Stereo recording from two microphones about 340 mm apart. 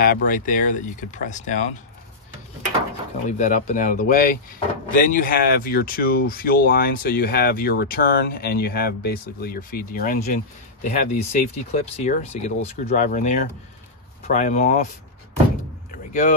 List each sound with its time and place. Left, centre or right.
0.0 s speech: left
3.3 s speech: left
15.9 s vehicle: left